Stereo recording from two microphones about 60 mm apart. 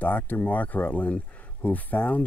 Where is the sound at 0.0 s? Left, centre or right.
Left.